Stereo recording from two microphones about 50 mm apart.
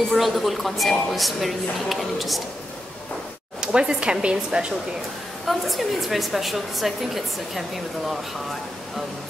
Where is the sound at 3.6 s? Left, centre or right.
Centre.